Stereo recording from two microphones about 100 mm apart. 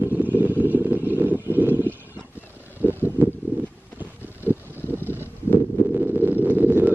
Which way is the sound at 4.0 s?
20° right (ahead or behind).